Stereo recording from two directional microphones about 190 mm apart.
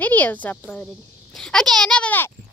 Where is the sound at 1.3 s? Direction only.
5° left (ahead or behind).